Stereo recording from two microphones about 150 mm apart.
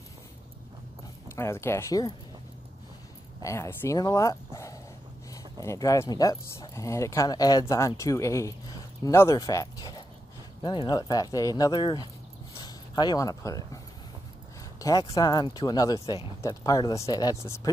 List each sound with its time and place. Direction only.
1.3 s speech: 15° left (ahead or behind)
3.4 s speech: 20° left (ahead or behind)
14.8 s speech: 25° left (ahead or behind)